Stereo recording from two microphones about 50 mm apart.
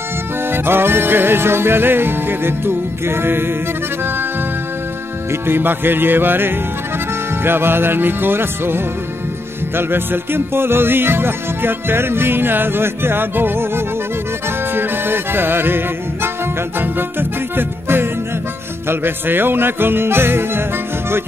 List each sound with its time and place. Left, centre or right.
0.5 s music: right
5.3 s music: right